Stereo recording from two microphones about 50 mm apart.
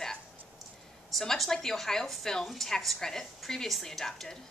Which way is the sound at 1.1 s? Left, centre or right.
Centre.